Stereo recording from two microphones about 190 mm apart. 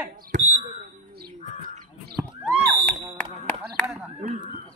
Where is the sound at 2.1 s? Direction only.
Centre (ahead or behind).